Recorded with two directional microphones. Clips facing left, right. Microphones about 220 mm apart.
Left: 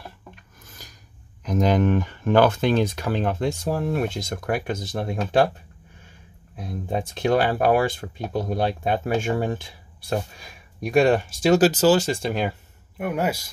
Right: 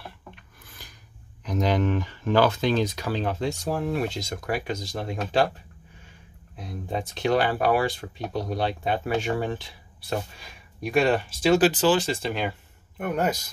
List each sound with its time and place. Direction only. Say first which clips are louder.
0.7 s filing: left 2 dB; 45° left (ahead or behind)
1.4 s speech: left 4 dB; 45° left (ahead or behind)
6.6 s speech: left 3 dB; 50° left (ahead or behind)
13.0 s a man's voice: left 1 dB; 10° left (ahead or behind)